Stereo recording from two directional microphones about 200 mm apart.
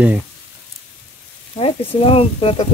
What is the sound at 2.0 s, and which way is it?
Speech, 30° left (ahead or behind).